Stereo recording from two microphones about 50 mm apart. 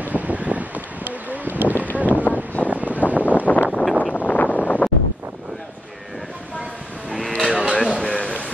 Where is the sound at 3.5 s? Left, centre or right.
Left.